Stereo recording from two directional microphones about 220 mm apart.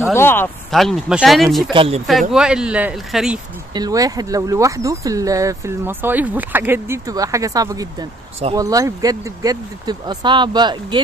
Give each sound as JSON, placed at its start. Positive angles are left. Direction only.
{"t": 0.1, "sound": "speech", "side_deg": 10}
{"t": 1.7, "sound": "speech", "side_deg": -25}
{"t": 2.0, "sound": "speech", "side_deg": 0}
{"t": 3.7, "sound": "speech", "side_deg": -15}